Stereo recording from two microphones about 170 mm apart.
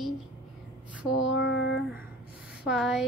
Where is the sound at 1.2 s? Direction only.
90° left.